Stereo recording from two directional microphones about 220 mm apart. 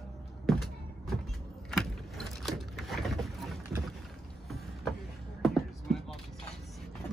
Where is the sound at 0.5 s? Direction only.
Centre (ahead or behind).